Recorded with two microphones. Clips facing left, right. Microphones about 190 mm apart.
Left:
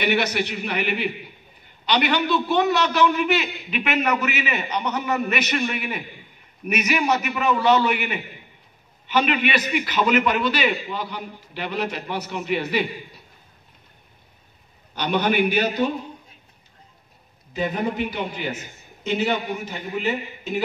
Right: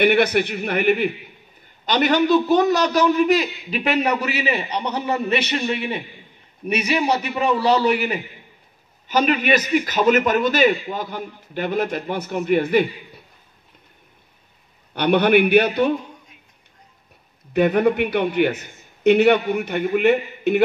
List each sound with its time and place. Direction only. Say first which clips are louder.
0.0 s a man's voice: right 6 dB; 55° right (ahead or behind)
15.0 s a man's voice: right 6 dB; 60° right (ahead or behind)
17.5 s a man's voice: right 8 dB; 65° right (ahead or behind)